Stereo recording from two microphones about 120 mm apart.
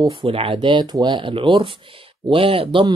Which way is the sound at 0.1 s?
50° right (ahead or behind).